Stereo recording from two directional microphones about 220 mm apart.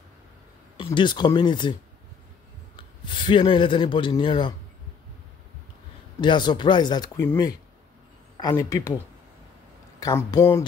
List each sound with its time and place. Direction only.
0.8 s speech: 20° left (ahead or behind)
6.2 s speech: 20° left (ahead or behind)